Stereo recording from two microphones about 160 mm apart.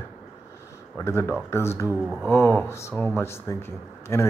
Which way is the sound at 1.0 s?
15° left (ahead or behind).